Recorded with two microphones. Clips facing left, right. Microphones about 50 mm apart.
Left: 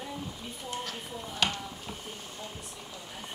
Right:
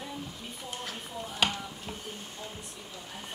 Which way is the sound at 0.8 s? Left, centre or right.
Centre.